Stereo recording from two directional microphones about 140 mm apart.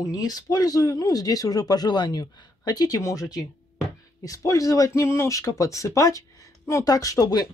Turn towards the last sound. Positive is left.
turn(degrees=25)  # may be behind; listen again after turning